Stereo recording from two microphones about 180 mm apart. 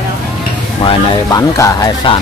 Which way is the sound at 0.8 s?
30° left (ahead or behind).